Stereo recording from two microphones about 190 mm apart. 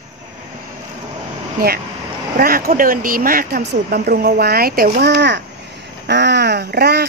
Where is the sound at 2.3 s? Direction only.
50° right (ahead or behind).